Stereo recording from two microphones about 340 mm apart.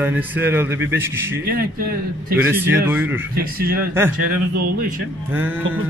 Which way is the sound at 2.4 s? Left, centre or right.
Centre.